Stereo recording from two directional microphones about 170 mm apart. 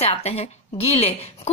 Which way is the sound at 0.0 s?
40° left (ahead or behind).